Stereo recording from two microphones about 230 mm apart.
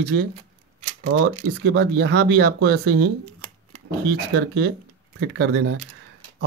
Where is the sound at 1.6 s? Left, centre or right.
Right.